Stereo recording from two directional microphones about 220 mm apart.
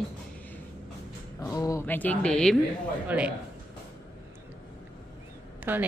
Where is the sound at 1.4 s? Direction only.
15° left (ahead or behind).